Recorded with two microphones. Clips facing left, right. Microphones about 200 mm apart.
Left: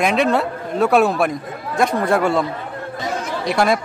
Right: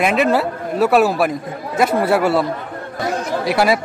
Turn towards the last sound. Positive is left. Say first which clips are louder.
# right 1 dB
turn(degrees=-5)  # may be behind; listen again after turning